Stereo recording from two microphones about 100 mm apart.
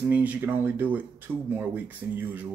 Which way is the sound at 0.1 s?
15° right (ahead or behind).